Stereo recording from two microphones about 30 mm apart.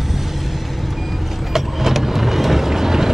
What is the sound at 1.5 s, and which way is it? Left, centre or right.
Vehicle, centre.